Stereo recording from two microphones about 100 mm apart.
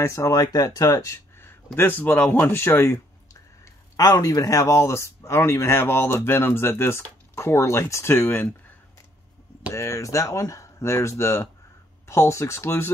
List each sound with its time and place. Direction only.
0.0 s speech: 30° left (ahead or behind)
9.7 s speech: 30° left (ahead or behind)